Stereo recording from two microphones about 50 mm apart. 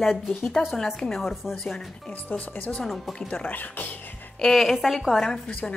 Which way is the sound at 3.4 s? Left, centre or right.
Left.